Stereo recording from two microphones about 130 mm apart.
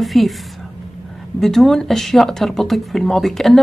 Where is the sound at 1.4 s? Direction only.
Centre (ahead or behind).